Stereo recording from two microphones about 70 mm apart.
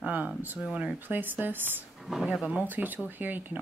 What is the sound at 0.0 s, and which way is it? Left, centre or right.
Speech, right.